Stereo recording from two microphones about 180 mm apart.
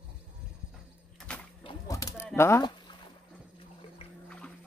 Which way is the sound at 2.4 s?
20° left (ahead or behind).